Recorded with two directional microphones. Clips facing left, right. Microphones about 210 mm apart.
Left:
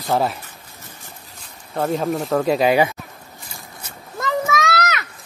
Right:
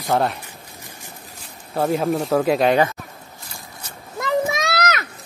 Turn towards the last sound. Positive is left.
turn(degrees=-35)  # may be behind; listen again after turning